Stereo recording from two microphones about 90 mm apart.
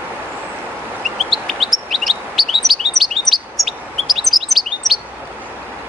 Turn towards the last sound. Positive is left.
turn(degrees=0)  # may be behind; listen again after turning